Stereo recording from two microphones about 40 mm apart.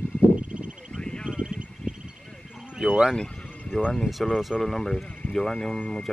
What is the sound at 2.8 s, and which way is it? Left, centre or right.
Speech, centre.